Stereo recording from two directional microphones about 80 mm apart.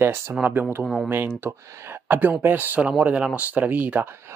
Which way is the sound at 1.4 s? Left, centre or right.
Right.